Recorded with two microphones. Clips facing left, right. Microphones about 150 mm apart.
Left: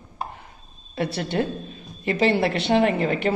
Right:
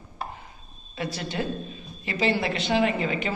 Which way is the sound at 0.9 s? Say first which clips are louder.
Left 6 dB; 60° left (ahead or behind).